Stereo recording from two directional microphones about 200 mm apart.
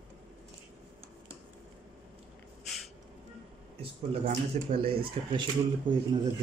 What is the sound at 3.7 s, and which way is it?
Speech, 30° right (ahead or behind).